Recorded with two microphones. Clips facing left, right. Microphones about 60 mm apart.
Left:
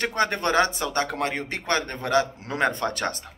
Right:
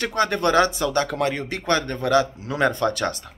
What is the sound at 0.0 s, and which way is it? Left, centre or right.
Speech, left.